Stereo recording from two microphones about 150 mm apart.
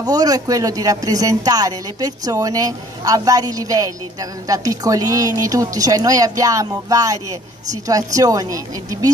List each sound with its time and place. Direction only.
0.0 s a woman's voice: 25° right (ahead or behind)